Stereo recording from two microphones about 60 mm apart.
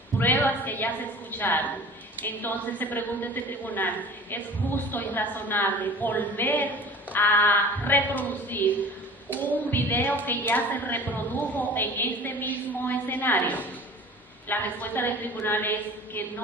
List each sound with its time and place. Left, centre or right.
0.2 s a woman's voice: left